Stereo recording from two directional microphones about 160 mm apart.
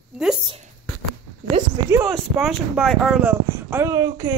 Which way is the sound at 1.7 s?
15° right (ahead or behind).